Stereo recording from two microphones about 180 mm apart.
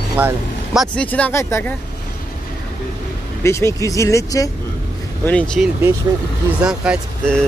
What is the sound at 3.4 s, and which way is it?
Speech, 15° left (ahead or behind).